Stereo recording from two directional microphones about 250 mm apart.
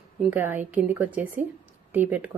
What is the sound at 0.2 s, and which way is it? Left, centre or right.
Speech, centre.